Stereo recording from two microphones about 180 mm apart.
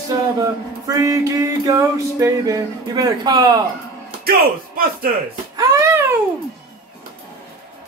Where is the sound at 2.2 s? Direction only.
20° right (ahead or behind).